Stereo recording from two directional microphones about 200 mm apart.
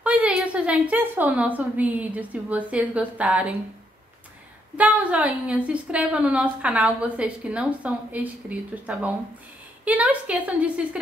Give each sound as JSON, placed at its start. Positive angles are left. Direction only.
{"t": 0.0, "sound": "a woman's voice", "side_deg": -5}
{"t": 4.7, "sound": "a woman's voice", "side_deg": -5}